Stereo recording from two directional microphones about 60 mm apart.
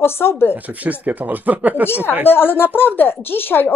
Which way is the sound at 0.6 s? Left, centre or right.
Right.